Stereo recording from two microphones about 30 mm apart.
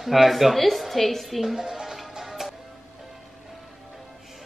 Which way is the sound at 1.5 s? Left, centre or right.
Centre.